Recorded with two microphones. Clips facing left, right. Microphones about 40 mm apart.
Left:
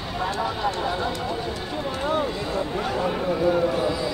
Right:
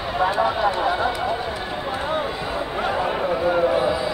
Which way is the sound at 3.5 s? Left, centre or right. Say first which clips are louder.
Right 4 dB; centre.